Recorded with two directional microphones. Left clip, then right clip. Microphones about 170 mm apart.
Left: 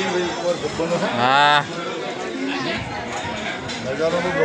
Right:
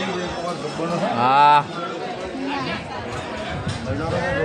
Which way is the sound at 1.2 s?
20° right (ahead or behind).